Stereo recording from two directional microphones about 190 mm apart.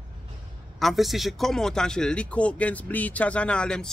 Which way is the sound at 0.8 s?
Centre (ahead or behind).